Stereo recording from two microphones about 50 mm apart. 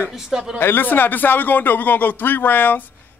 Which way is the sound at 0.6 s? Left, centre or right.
Left.